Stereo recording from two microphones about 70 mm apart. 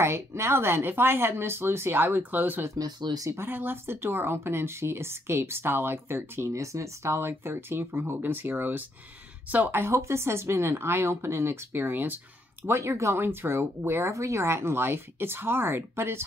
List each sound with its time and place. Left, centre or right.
0.0 s speech: right
2.8 s speech: right
3.3 s speech: right
6.5 s speech: right
9.8 s speech: right
12.6 s speech: right